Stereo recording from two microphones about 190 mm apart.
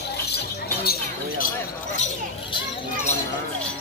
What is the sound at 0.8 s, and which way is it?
Speech, 55° left (ahead or behind).